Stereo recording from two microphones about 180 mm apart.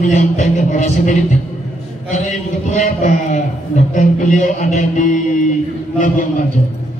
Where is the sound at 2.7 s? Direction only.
40° left (ahead or behind).